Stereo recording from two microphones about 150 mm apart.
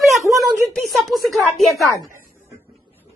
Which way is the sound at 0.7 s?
Centre (ahead or behind).